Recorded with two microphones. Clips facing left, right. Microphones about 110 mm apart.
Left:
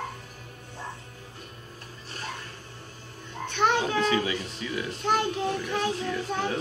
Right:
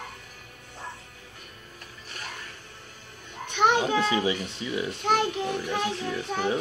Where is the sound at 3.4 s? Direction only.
15° right (ahead or behind).